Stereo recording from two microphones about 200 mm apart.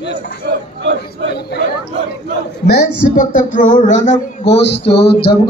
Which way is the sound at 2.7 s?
40° left (ahead or behind).